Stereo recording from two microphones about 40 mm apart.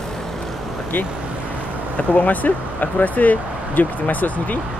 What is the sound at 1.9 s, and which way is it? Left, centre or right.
Speech, left.